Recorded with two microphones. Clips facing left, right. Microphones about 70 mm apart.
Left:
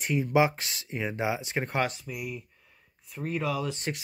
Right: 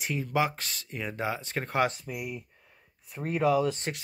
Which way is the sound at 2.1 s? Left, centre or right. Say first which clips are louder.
Even; right.